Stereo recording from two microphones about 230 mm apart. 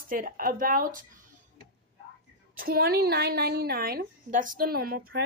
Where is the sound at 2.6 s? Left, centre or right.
Right.